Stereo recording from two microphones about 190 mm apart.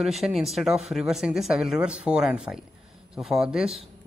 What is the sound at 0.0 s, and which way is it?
Speech, centre (ahead or behind).